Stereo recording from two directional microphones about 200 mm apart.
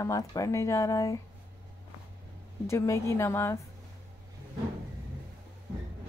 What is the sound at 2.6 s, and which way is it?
Speech, 15° left (ahead or behind).